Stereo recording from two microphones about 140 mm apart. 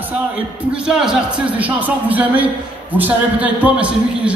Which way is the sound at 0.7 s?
5° right (ahead or behind).